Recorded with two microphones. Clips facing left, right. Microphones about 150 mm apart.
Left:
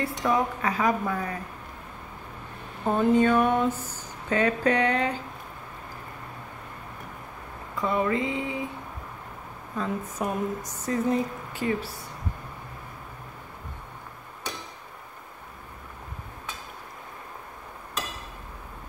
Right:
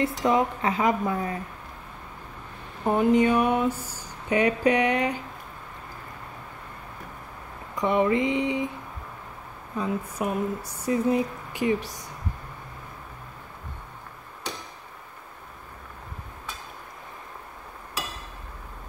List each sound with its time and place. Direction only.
0.0 s a woman's voice: 20° right (ahead or behind)
2.9 s speech: 15° right (ahead or behind)
7.7 s a woman's voice: 20° right (ahead or behind)
9.8 s speech: 10° right (ahead or behind)